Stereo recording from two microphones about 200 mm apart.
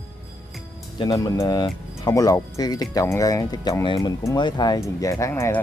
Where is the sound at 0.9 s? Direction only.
20° left (ahead or behind).